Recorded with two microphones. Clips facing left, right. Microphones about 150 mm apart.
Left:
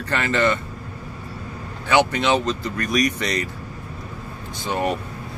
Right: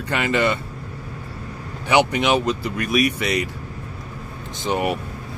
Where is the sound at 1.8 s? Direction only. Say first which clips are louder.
Right 1 dB; 15° right (ahead or behind).